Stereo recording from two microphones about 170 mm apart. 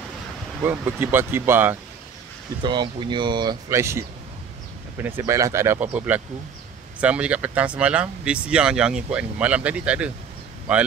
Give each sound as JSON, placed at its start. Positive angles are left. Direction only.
{"t": 0.6, "sound": "speech", "side_deg": -15}
{"t": 2.6, "sound": "speech", "side_deg": -25}